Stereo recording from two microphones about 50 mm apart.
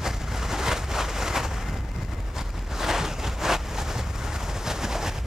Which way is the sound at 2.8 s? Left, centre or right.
Centre.